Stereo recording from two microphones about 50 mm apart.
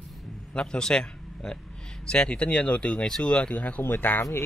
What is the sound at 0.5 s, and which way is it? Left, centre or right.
A man's voice, centre.